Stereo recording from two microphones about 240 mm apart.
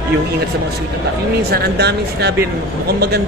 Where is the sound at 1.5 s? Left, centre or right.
Right.